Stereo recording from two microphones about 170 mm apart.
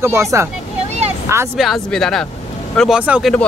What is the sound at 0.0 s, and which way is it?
Speech, 15° right (ahead or behind).